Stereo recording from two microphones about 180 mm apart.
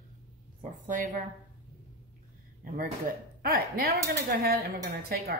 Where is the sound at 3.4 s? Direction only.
55° right (ahead or behind).